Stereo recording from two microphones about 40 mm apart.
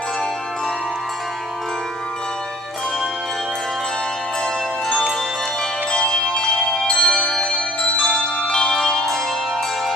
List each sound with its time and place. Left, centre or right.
5.9 s music: left
6.6 s bell: centre
7.0 s music: centre